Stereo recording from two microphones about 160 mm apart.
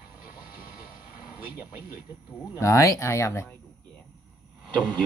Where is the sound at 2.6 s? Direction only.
20° left (ahead or behind).